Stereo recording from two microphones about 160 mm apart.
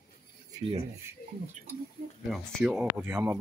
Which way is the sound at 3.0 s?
15° right (ahead or behind).